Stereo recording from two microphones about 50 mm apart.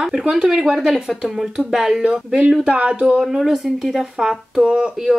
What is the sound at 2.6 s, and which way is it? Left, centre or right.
Speech, right.